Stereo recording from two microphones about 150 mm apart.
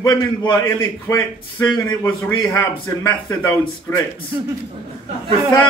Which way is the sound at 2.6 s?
20° left (ahead or behind).